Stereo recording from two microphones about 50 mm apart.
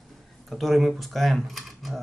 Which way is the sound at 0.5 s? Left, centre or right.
Centre.